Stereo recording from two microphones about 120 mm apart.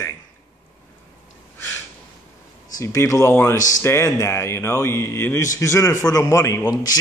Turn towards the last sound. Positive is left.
turn(degrees=30)  # may be behind; listen again after turning